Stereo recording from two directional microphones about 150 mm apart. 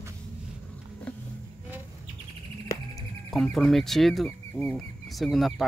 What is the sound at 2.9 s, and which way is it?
Speech, centre (ahead or behind).